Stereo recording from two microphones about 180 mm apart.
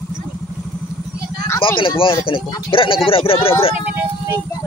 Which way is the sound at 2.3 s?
20° left (ahead or behind).